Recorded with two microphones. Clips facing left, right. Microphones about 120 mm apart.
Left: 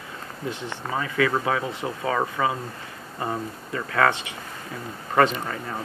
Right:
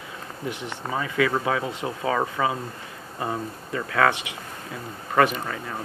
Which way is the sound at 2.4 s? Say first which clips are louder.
Even; 5° right (ahead or behind).